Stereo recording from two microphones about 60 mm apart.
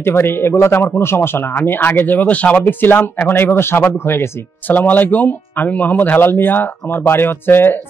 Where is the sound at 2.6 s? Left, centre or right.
Left.